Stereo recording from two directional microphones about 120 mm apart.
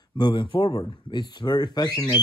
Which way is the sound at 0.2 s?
40° left (ahead or behind).